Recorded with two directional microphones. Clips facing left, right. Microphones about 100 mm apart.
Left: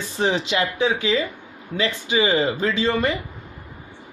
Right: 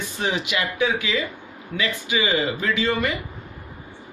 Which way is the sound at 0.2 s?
30° left (ahead or behind).